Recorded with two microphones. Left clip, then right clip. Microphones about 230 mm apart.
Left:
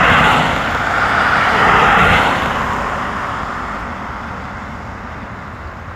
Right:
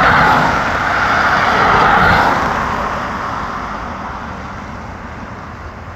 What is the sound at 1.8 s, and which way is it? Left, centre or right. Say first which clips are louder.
Vehicle: even; centre.